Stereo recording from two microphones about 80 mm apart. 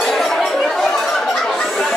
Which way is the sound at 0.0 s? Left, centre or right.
Centre.